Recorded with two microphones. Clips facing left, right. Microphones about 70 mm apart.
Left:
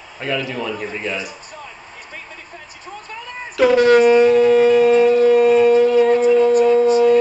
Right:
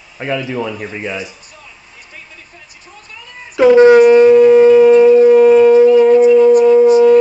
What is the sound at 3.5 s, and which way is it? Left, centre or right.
Shofar, right.